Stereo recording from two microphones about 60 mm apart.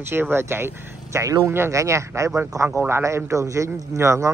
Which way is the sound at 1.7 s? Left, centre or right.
Right.